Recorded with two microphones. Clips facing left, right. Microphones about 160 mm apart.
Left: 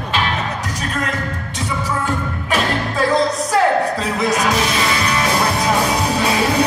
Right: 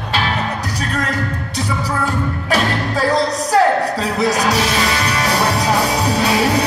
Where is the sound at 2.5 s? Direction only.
35° right (ahead or behind).